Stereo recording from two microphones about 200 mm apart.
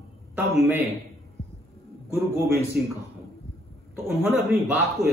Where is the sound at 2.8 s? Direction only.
55° right (ahead or behind).